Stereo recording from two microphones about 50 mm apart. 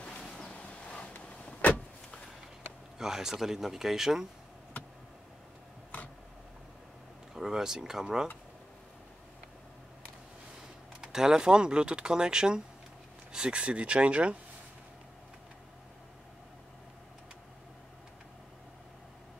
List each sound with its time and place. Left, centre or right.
0.2 s waves: centre
0.5 s a sound: left
1.4 s vehicle: left
3.0 s speech: centre
7.3 s speech: centre
11.0 s speech: centre